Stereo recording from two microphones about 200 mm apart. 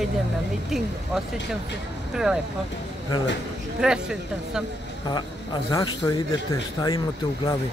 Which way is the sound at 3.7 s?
5° right (ahead or behind).